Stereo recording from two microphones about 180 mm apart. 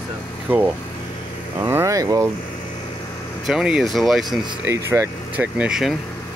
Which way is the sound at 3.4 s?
5° right (ahead or behind).